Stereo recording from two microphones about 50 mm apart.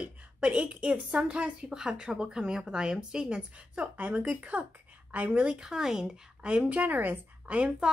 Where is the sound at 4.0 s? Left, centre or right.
Right.